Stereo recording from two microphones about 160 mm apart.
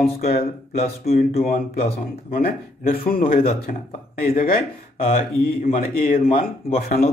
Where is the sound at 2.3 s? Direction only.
65° left (ahead or behind).